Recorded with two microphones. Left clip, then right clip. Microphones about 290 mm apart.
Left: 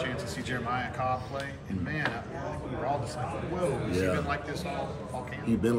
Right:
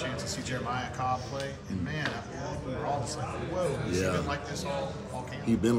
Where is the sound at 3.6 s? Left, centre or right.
Centre.